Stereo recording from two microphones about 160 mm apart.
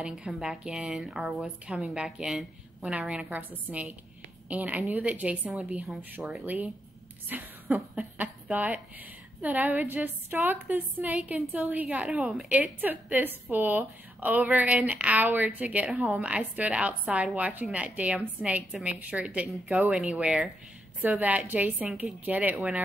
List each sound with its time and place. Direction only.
0.0 s a woman's voice: 5° right (ahead or behind)